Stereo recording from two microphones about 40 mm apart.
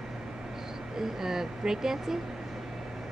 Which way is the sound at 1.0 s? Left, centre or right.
Centre.